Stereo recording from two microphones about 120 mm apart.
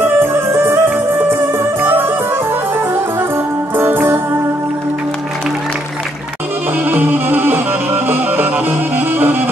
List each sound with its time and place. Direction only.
0.2 s music: 20° right (ahead or behind)
3.7 s music: 20° right (ahead or behind)
6.8 s music: 15° right (ahead or behind)